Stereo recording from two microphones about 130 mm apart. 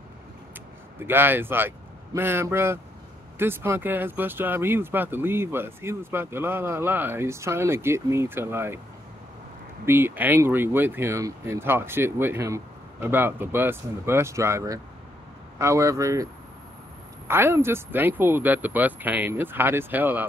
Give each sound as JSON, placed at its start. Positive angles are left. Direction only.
{"t": 0.9, "sound": "a man's voice", "side_deg": -15}
{"t": 9.8, "sound": "a man's voice", "side_deg": -15}
{"t": 17.3, "sound": "speech", "side_deg": -20}